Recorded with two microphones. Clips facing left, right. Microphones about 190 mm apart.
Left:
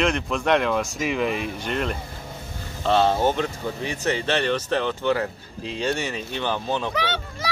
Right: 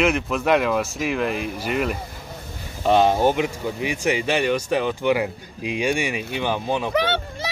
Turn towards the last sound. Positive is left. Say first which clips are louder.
# right 5 dB
turn(degrees=-55)  # may be behind; listen again after turning